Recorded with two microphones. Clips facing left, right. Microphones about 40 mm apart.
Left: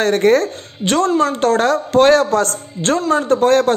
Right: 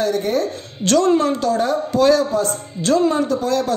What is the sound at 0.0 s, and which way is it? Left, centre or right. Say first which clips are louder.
Speech: left 6 dB; left.